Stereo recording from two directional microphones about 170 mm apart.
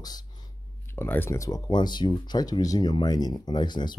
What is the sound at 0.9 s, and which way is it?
Speech, 10° left (ahead or behind).